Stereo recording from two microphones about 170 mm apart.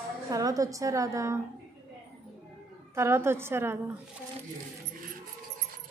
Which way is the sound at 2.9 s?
15° right (ahead or behind).